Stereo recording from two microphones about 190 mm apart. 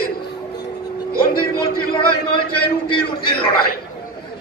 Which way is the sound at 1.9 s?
25° left (ahead or behind).